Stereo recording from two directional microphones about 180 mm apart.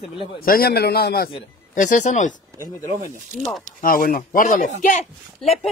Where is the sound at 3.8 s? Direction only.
55° left (ahead or behind).